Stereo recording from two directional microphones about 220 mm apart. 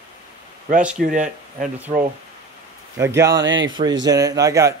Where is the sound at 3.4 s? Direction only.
60° right (ahead or behind).